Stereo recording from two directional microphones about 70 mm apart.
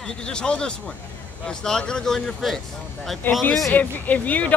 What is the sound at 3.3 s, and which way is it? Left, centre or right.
Speech, left.